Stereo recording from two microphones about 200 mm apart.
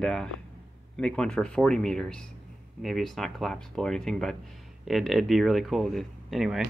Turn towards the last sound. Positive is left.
turn(degrees=0)  # may be behind; listen again after turning